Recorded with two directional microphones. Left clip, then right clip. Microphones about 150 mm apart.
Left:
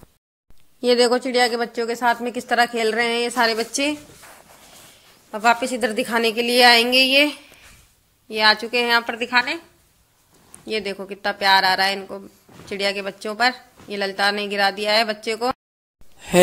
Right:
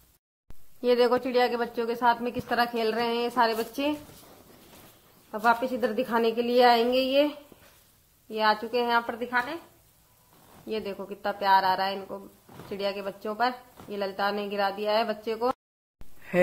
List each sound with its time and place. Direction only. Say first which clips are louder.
0.7 s a woman's voice: left 6 dB; 25° left (ahead or behind)
5.3 s a woman's voice: left 6 dB; 10° left (ahead or behind)
9.2 s a woman's voice: left 8 dB; 45° left (ahead or behind)
10.7 s a woman's voice: left 7 dB; 10° left (ahead or behind)